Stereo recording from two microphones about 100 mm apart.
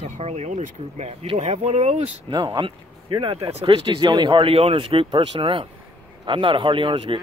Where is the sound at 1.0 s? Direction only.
90° right.